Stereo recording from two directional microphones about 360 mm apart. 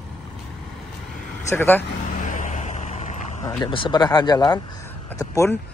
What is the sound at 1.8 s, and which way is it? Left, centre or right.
Vehicle, left.